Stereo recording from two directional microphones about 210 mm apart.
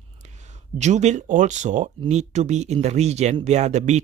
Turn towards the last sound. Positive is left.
turn(degrees=-35)  # may be behind; listen again after turning